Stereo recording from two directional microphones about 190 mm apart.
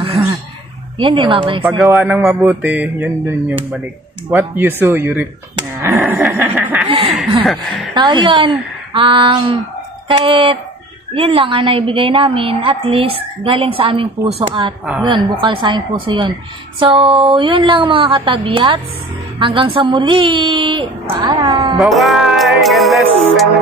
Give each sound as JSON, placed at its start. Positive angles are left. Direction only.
{"t": 0.0, "sound": "throat clearing", "side_deg": -30}
{"t": 0.9, "sound": "a woman's voice", "side_deg": -25}
{"t": 2.0, "sound": "speech", "side_deg": -5}
{"t": 5.9, "sound": "snicker", "side_deg": 0}
{"t": 7.4, "sound": "music", "side_deg": 0}
{"t": 7.9, "sound": "a woman's voice", "side_deg": -25}
{"t": 15.0, "sound": "a woman's voice", "side_deg": -25}
{"t": 21.7, "sound": "music", "side_deg": 0}